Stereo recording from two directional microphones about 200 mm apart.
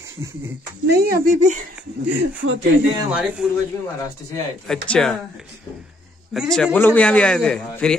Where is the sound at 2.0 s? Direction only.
65° right (ahead or behind).